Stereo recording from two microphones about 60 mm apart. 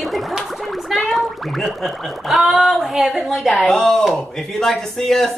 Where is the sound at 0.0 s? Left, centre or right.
Centre.